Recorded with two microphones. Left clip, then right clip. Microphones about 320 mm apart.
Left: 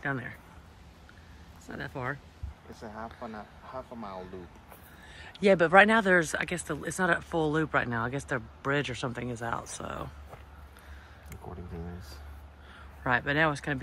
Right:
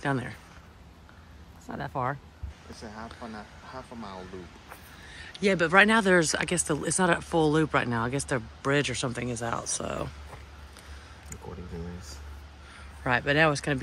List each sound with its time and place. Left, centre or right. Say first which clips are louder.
0.0 s speech: right 3 dB; centre
2.7 s speech: even; left
5.1 s speech: left 3 dB; centre
13.0 s speech: right 3 dB; centre